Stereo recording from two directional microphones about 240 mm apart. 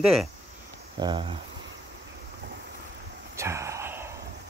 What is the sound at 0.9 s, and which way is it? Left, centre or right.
Speech, centre.